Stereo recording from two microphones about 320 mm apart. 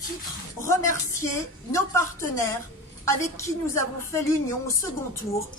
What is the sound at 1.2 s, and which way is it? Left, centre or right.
A woman's voice, centre.